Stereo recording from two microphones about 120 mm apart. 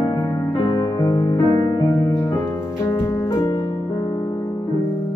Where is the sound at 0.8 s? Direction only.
30° left (ahead or behind).